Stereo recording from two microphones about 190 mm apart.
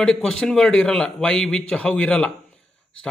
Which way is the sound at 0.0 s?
5° left (ahead or behind).